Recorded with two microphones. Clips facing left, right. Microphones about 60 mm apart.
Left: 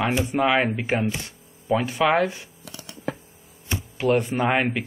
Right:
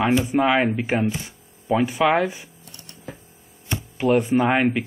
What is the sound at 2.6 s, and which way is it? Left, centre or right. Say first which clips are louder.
Scissors: left 9 dB; left.